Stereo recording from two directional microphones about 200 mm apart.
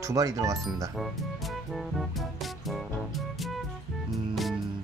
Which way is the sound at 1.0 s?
Centre (ahead or behind).